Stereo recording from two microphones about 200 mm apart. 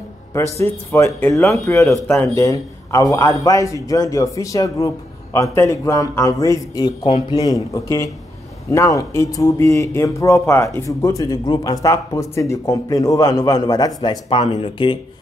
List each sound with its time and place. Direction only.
0.3 s a man's voice: 15° left (ahead or behind)
14.4 s speech: 30° left (ahead or behind)